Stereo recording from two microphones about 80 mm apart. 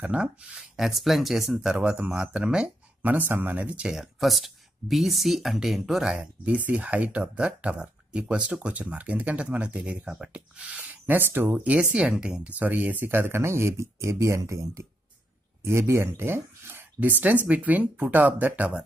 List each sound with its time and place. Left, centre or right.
0.1 s speech: centre
3.1 s speech: right; by 6.2 s centre
6.4 s speech: centre